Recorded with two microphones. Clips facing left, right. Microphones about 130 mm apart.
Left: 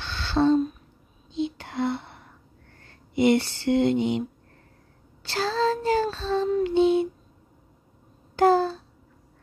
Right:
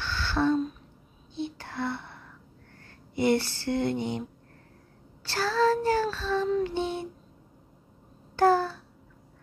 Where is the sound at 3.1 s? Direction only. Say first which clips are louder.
Left 4 dB; 15° left (ahead or behind).